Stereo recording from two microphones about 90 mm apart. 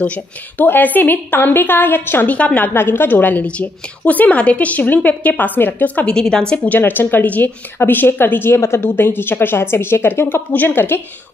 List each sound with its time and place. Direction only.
0.0 s a woman's voice: 15° left (ahead or behind)
6.0 s a woman's voice: 5° left (ahead or behind)